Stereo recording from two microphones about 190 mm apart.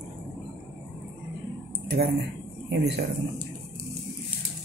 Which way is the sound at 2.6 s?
60° right (ahead or behind).